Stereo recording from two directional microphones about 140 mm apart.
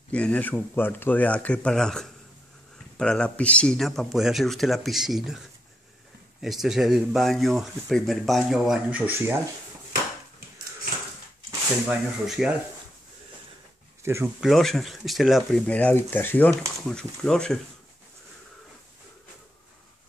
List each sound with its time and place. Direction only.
0.1 s speech: 10° left (ahead or behind)
6.4 s speech: centre (ahead or behind)
11.9 s speech: 5° right (ahead or behind)
14.0 s speech: 20° right (ahead or behind)
14.4 s speech: centre (ahead or behind)